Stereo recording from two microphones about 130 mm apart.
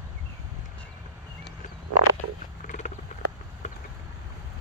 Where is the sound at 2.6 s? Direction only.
70° left (ahead or behind).